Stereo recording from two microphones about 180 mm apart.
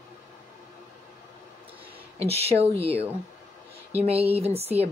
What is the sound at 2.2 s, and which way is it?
Speech, 35° right (ahead or behind).